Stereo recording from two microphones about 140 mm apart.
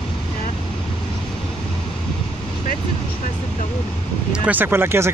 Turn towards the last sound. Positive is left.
turn(degrees=-15)  # may be behind; listen again after turning